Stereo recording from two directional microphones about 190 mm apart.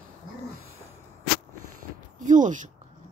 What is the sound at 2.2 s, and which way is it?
Speech, 40° right (ahead or behind).